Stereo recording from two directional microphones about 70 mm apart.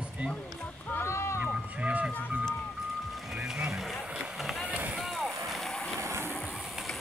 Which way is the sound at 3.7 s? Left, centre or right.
Centre.